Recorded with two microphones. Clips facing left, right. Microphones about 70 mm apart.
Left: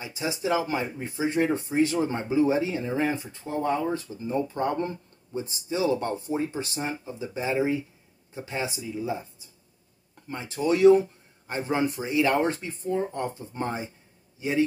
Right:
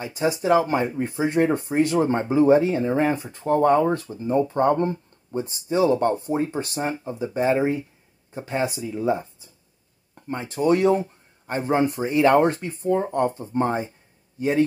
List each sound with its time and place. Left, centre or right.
0.0 s speech: right
3.3 s speech: right
4.0 s speech: right
10.2 s speech: right
13.5 s speech: right